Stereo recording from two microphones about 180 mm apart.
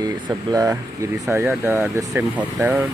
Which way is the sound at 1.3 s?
10° right (ahead or behind).